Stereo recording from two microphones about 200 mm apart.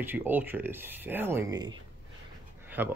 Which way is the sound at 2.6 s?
10° right (ahead or behind).